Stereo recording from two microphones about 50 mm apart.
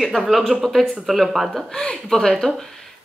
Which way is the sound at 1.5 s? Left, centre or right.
Centre.